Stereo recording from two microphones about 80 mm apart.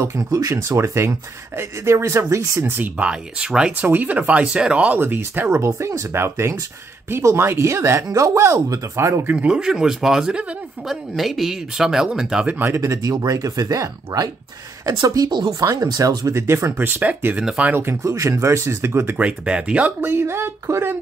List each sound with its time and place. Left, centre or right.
0.0 s speech: right
2.8 s speech: centre; by 9.2 s right
9.3 s speech: centre
12.4 s speech: right
12.7 s speech: right
15.6 s speech: right
16.7 s speech: right
17.4 s speech: centre
17.6 s speech: right
19.1 s speech: centre
20.0 s speech: right